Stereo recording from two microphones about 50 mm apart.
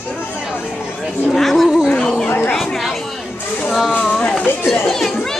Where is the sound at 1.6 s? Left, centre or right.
Centre.